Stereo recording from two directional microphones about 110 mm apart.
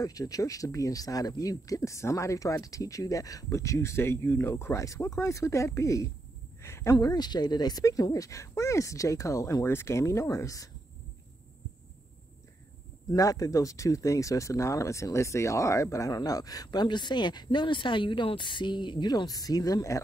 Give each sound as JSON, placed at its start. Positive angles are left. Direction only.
{"t": 0.0, "sound": "speech", "side_deg": 35}
{"t": 13.1, "sound": "speech", "side_deg": 30}